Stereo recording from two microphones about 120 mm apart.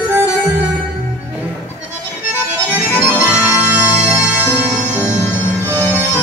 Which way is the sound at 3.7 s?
15° right (ahead or behind).